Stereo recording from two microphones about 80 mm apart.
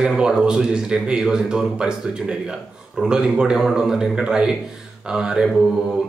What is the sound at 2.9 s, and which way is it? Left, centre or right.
Speech, centre.